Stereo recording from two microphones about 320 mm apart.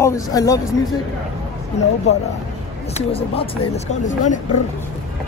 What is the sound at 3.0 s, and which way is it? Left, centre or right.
Speech, centre.